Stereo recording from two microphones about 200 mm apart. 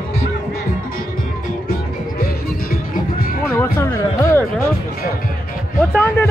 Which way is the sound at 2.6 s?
45° left (ahead or behind).